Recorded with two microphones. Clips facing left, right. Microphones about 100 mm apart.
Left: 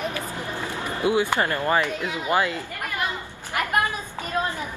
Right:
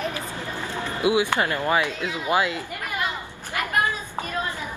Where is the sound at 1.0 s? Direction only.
15° right (ahead or behind).